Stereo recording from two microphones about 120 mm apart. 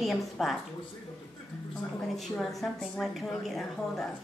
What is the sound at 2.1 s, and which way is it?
A woman's voice, centre (ahead or behind).